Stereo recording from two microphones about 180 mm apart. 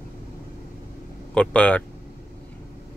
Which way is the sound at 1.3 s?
5° left (ahead or behind).